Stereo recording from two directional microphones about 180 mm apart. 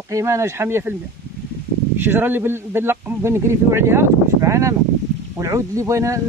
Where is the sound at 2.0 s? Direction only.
10° right (ahead or behind).